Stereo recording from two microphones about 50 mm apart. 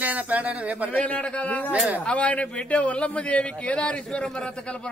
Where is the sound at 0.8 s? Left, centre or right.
Left.